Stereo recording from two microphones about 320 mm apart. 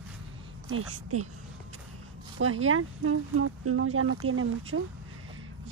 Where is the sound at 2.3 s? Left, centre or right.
Right.